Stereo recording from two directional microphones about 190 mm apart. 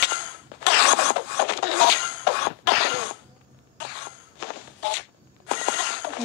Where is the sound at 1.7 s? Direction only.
60° left (ahead or behind).